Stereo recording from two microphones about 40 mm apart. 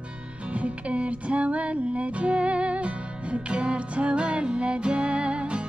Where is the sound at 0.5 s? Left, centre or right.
Right.